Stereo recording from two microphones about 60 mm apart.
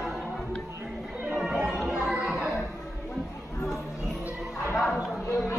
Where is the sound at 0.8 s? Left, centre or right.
Centre.